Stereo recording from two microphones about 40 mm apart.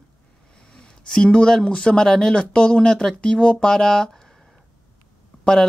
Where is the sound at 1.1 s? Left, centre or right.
Left.